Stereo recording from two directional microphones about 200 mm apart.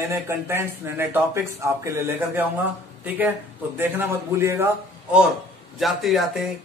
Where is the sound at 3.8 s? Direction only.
10° right (ahead or behind).